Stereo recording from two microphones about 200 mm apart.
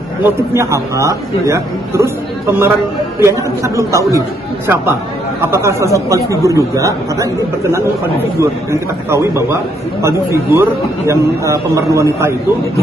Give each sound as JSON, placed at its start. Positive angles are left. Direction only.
{"t": 0.2, "sound": "a man's voice", "side_deg": -15}
{"t": 5.4, "sound": "a man's voice", "side_deg": -15}
{"t": 10.0, "sound": "a man's voice", "side_deg": -15}